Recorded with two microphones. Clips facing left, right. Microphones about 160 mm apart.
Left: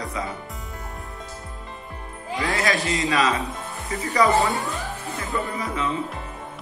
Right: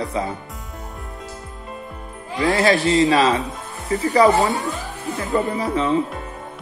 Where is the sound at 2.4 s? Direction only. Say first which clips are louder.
Right 7 dB; 30° right (ahead or behind).